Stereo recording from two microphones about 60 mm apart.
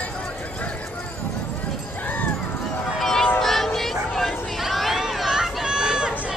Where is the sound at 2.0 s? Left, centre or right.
Left.